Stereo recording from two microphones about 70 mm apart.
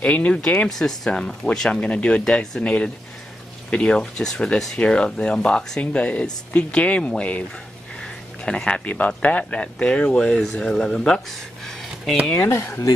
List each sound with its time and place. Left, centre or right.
0.0 s speech: centre
0.7 s speech: centre
12.4 s speech: left